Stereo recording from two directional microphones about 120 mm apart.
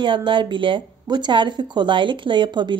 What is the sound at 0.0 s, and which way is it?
A woman's voice, 40° right (ahead or behind).